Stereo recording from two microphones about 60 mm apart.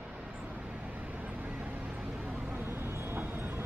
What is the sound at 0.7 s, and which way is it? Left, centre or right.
Vehicle, right.